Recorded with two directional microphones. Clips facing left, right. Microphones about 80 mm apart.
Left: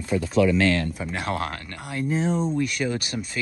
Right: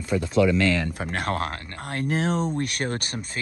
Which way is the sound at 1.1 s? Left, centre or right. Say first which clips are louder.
Right 1 dB; right.